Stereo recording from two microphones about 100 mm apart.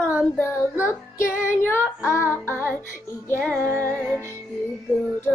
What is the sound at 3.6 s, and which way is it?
Music, 25° right (ahead or behind).